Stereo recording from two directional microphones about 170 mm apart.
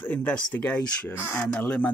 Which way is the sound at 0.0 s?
10° left (ahead or behind).